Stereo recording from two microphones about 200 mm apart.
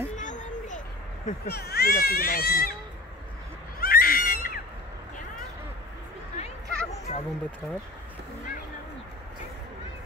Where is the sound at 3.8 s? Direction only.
50° left (ahead or behind).